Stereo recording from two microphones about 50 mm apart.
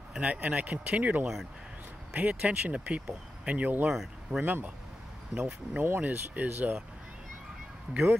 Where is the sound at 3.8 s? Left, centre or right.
Centre.